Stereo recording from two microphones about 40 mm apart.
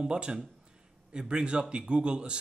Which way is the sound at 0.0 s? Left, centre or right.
Right.